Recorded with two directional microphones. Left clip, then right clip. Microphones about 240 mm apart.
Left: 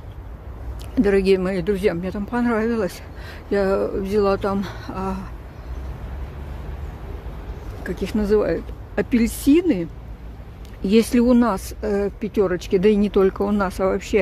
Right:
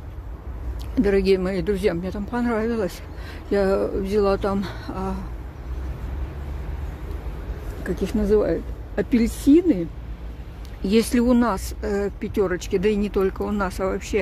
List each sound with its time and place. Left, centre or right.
0.9 s speech: centre
7.8 s speech: centre